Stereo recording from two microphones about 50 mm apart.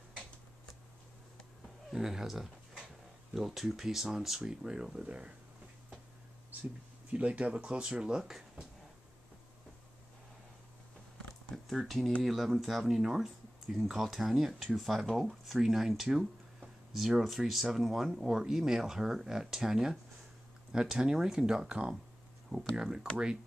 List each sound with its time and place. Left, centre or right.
1.9 s speech: centre
7.1 s speech: right
11.5 s speech: centre